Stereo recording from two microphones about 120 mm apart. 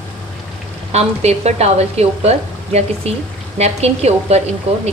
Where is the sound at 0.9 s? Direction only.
65° right (ahead or behind).